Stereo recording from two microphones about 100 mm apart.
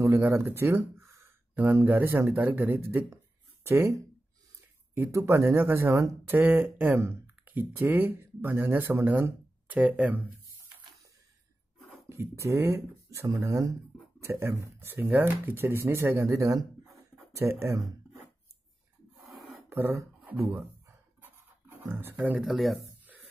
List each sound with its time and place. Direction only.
0.0 s speech: 25° right (ahead or behind)
12.1 s speech: 30° right (ahead or behind)
19.7 s speech: 25° right (ahead or behind)
21.2 s writing: 20° right (ahead or behind)
22.4 s speech: centre (ahead or behind)